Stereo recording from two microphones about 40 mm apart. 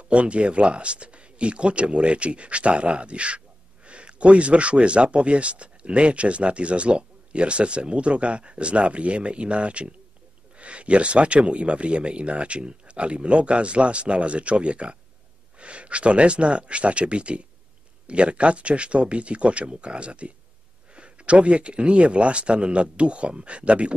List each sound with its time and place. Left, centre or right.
0.1 s speech: right